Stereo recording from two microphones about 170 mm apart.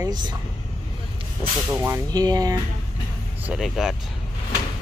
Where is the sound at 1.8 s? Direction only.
20° right (ahead or behind).